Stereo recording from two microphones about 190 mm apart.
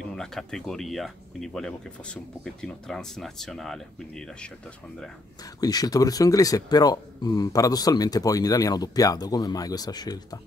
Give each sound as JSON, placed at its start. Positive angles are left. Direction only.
{"t": 0.1, "sound": "speech", "side_deg": 5}
{"t": 5.6, "sound": "speech", "side_deg": 20}